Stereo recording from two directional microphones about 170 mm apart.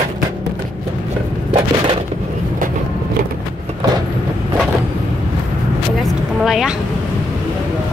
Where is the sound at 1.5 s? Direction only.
35° right (ahead or behind).